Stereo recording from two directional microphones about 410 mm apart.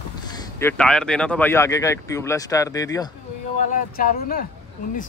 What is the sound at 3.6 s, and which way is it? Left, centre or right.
Speech, centre.